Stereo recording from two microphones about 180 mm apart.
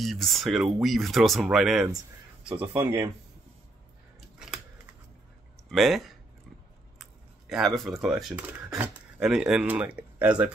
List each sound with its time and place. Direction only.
0.0 s speech: centre (ahead or behind)
5.7 s speech: centre (ahead or behind)